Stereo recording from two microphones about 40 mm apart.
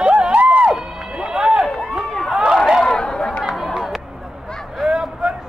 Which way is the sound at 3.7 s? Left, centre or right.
Centre.